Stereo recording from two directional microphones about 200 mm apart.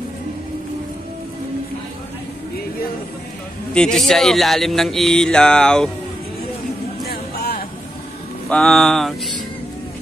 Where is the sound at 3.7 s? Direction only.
5° left (ahead or behind).